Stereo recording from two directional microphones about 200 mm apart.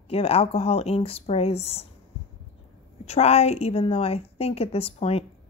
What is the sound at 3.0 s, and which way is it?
A woman's voice, 30° left (ahead or behind).